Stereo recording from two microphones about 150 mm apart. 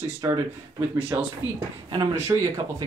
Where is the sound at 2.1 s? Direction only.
20° right (ahead or behind).